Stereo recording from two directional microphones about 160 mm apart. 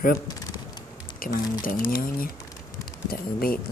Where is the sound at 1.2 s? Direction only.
65° left (ahead or behind).